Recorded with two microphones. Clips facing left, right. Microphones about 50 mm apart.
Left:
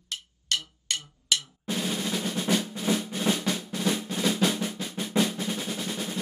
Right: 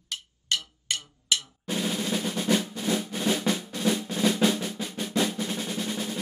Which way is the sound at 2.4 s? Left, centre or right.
Centre.